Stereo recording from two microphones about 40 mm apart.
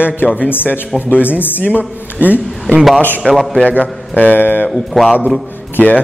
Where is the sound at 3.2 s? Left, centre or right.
Left.